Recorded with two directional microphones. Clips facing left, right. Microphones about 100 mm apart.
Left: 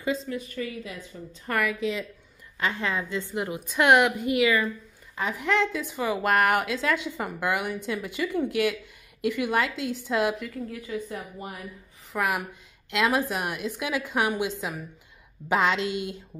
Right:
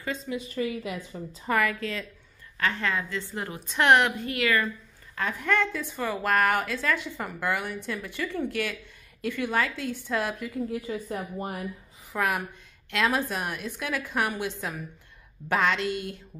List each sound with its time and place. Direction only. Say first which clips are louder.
0.3 s a woman's voice: even; 5° right (ahead or behind)
1.1 s a woman's voice: right 3 dB; 45° right (ahead or behind)
1.5 s speech: right 2 dB; 5° left (ahead or behind)
1.8 s a woman's voice: left 4 dB; 15° left (ahead or behind)
10.7 s a woman's voice: right 2 dB; 30° right (ahead or behind)
12.1 s a woman's voice: even; 5° left (ahead or behind)